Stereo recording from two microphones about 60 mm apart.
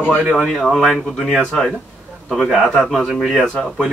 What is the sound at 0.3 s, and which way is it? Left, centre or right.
A man's voice, centre.